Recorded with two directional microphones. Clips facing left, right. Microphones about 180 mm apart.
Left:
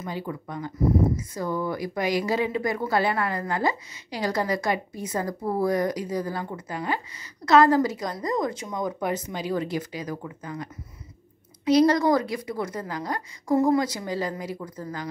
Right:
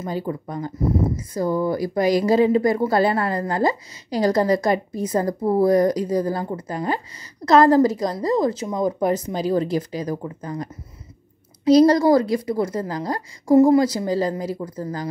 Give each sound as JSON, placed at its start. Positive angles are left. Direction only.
{"t": 0.0, "sound": "speech", "side_deg": -40}